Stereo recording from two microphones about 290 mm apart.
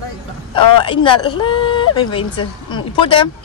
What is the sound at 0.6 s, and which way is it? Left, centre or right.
Speech, centre.